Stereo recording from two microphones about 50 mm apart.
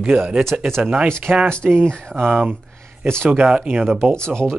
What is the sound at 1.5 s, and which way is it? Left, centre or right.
Speech, centre.